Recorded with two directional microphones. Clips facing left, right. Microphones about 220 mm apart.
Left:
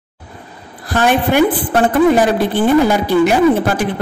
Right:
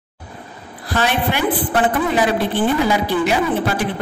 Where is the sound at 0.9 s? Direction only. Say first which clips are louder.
Left 7 dB; 50° left (ahead or behind).